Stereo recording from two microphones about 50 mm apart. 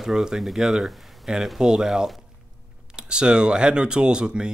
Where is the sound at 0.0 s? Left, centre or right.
Centre.